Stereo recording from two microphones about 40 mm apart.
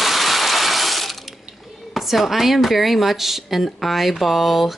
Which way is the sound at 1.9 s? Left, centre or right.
Centre.